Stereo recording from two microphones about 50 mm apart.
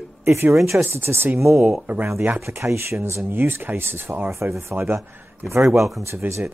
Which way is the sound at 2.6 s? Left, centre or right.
Right.